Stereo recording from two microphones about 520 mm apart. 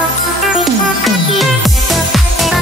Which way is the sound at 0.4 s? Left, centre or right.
Centre.